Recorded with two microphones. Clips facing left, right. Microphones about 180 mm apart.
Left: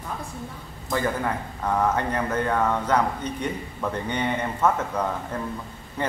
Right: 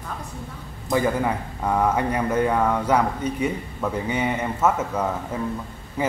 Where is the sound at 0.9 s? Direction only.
10° right (ahead or behind).